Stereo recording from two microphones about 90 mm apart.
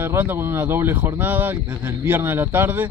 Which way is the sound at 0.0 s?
25° right (ahead or behind).